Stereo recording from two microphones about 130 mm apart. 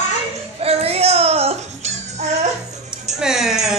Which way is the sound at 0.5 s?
50° right (ahead or behind).